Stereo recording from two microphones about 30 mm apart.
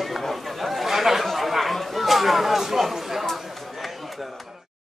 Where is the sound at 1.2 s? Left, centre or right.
Centre.